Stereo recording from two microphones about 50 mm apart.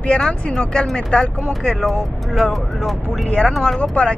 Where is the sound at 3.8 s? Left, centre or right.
Left.